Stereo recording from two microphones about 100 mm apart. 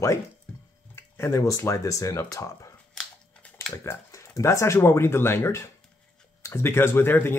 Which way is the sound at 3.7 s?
30° left (ahead or behind).